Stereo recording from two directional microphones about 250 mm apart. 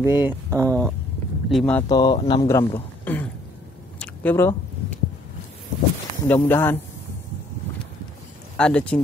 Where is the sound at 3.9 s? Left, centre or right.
Centre.